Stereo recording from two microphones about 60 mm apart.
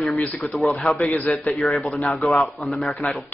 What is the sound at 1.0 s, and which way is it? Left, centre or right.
Speech, left.